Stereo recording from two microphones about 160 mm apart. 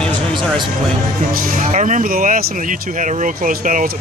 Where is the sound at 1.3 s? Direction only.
60° right (ahead or behind).